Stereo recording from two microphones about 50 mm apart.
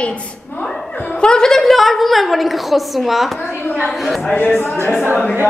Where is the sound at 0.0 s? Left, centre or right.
Left.